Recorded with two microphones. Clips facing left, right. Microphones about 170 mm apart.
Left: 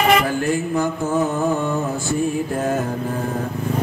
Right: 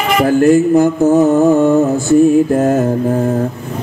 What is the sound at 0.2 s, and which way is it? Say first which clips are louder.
Music: right 12 dB; 45° right (ahead or behind).